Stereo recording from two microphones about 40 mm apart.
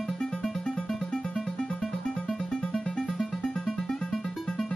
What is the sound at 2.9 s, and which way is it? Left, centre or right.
Music, centre.